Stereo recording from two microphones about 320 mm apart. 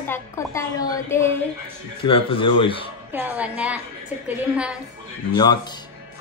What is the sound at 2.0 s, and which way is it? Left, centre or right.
Speech, centre.